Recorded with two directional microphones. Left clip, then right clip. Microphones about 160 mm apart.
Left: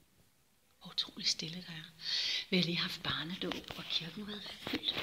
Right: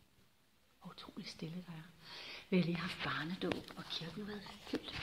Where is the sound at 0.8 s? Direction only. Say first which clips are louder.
Left 15 dB; 5° right (ahead or behind).